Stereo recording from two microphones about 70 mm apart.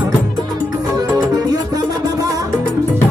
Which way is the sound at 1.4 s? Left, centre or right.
Right.